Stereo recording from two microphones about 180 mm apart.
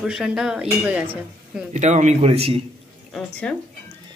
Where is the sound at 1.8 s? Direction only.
40° right (ahead or behind).